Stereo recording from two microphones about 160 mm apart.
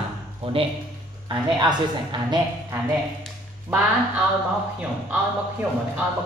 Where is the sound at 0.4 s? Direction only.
35° right (ahead or behind).